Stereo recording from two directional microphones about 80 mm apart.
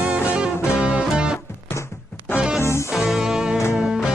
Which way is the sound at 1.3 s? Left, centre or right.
Left.